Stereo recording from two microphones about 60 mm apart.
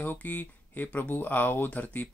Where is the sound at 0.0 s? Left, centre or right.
Left.